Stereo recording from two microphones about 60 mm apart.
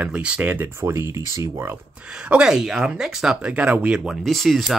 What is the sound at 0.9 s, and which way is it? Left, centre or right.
Speech, right.